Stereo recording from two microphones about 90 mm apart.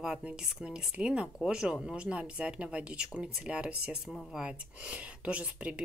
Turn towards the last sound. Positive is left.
turn(degrees=-15)  # may be behind; listen again after turning